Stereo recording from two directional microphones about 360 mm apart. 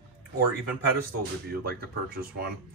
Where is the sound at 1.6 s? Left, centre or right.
Right.